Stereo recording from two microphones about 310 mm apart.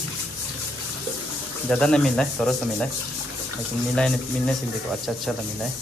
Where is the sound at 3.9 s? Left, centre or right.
Centre.